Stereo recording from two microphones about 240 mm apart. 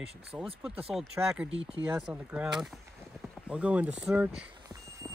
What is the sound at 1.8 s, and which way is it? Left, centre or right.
Speech, centre.